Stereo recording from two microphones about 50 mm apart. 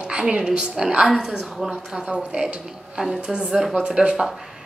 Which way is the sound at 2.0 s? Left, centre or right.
Right.